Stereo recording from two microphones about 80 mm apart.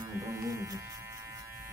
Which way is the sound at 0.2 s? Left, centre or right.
Right.